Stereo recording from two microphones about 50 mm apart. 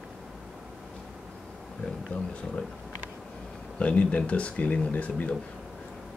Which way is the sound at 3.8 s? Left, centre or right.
Left.